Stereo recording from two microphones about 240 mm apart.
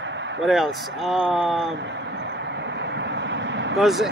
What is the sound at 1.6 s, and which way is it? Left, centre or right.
Vehicle, right.